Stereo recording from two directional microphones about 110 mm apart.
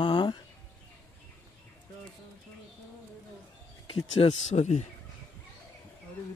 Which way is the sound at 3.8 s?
55° left (ahead or behind).